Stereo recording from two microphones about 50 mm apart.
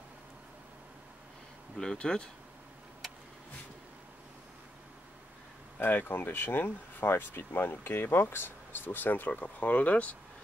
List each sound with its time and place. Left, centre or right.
2.0 s speech: centre
5.8 s speech: left
9.3 s speech: left